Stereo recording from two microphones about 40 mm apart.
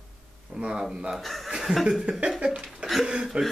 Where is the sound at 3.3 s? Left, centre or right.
Right.